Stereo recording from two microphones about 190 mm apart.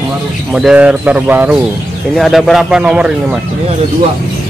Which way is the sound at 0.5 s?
5° right (ahead or behind).